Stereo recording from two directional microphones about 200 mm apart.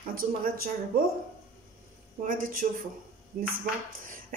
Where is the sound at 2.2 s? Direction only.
45° right (ahead or behind).